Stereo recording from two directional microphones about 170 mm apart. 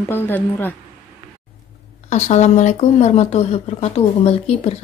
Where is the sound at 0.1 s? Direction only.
10° left (ahead or behind).